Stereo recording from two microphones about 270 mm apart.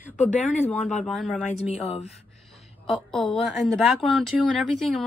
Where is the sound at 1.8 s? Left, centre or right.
Left.